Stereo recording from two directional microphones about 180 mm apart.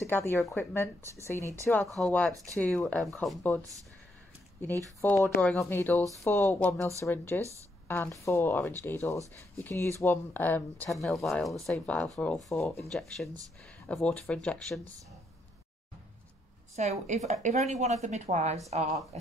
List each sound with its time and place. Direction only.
0.0 s speech: 15° left (ahead or behind)
2.3 s speech: 15° right (ahead or behind)
2.6 s speech: 10° left (ahead or behind)
5.0 s speech: 10° left (ahead or behind)
16.7 s speech: 40° right (ahead or behind)